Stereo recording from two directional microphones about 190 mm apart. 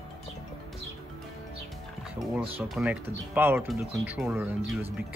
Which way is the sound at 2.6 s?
5° right (ahead or behind).